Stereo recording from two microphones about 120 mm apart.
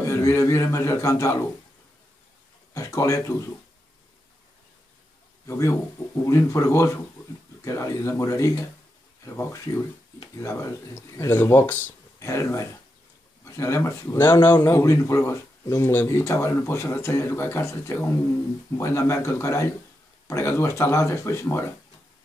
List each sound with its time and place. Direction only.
0.1 s speech: 25° left (ahead or behind)
2.7 s speech: 25° left (ahead or behind)
5.5 s speech: 25° left (ahead or behind)